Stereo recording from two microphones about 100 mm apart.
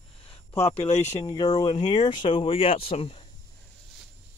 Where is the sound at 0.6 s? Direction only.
90° left.